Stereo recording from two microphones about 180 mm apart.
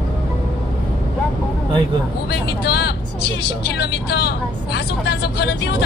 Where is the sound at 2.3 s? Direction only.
65° left (ahead or behind).